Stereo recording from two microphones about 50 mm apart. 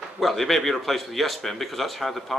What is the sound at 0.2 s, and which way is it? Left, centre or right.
Speech, centre.